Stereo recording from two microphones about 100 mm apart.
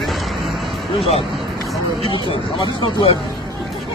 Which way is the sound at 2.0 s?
60° left (ahead or behind).